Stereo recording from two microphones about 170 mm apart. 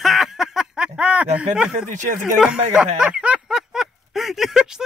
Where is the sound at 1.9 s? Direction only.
50° right (ahead or behind).